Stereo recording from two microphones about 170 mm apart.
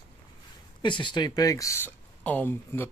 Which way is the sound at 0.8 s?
30° left (ahead or behind).